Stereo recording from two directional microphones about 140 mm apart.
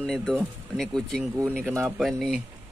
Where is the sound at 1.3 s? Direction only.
15° right (ahead or behind).